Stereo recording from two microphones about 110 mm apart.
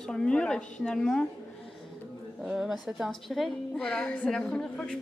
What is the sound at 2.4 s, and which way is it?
A woman's voice, 5° right (ahead or behind).